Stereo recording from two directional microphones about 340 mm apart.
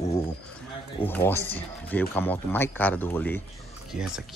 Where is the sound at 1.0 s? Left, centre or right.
Centre.